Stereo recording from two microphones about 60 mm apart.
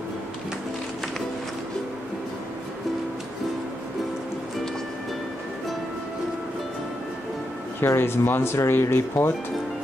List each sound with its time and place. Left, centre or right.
7.8 s speech: left